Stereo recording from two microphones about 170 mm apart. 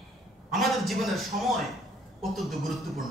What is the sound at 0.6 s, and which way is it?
A man's voice, centre (ahead or behind).